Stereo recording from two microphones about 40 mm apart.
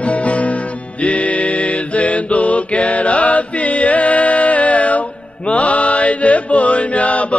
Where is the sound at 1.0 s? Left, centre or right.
Left.